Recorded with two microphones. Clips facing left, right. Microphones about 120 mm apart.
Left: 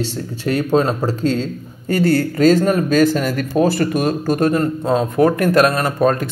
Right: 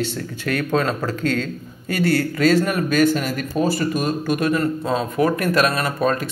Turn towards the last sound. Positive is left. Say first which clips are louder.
# left 4 dB
turn(degrees=50)  # may be behind; listen again after turning